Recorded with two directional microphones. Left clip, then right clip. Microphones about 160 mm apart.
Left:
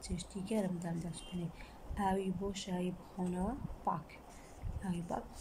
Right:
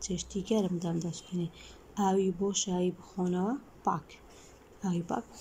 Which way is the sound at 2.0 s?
15° right (ahead or behind).